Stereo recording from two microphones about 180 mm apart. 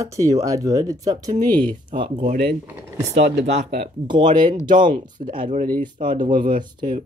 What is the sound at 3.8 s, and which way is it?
Speech, 25° right (ahead or behind).